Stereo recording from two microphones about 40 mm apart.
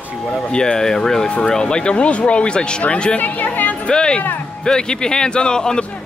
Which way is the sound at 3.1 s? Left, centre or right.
Left.